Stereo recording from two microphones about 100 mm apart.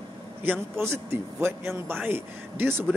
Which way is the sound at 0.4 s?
25° right (ahead or behind).